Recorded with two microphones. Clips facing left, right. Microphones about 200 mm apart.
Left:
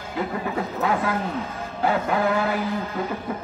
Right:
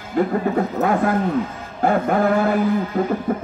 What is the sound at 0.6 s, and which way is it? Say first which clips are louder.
A man's voice: right 3 dB; 45° right (ahead or behind).